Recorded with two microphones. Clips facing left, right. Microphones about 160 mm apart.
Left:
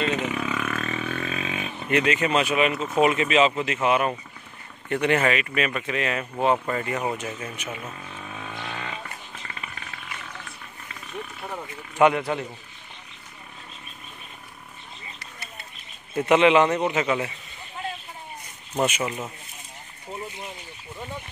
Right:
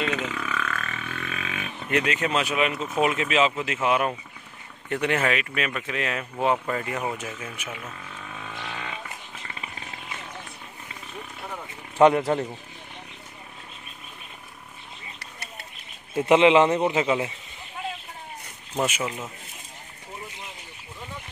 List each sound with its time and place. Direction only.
0.0 s burping: 20° left (ahead or behind)
1.8 s speech: centre (ahead or behind)
7.8 s wild animals: 15° left (ahead or behind)
9.6 s vehicle: 25° right (ahead or behind)
12.0 s a man's voice: 35° right (ahead or behind)
16.2 s a man's voice: 20° right (ahead or behind)
18.9 s speech: centre (ahead or behind)